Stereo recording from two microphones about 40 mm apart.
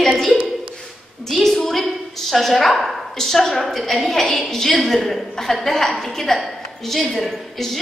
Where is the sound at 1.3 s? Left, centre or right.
Centre.